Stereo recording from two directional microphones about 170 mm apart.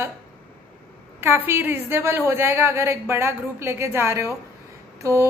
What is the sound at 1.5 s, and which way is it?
A woman's voice, 15° right (ahead or behind).